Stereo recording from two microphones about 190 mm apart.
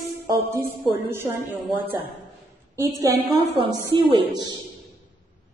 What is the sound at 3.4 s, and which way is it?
Music, 30° right (ahead or behind).